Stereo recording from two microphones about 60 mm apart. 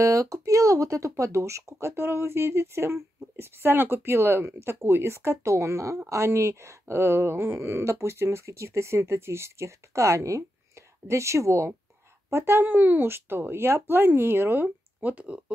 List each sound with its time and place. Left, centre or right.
0.0 s speech: right
15.0 s speech: right